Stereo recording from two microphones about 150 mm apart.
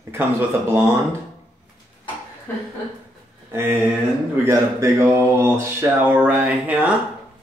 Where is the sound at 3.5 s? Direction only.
15° right (ahead or behind).